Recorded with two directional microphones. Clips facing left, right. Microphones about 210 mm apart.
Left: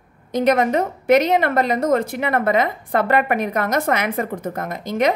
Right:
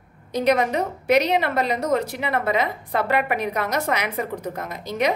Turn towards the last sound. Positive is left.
turn(degrees=50)  # may be behind; listen again after turning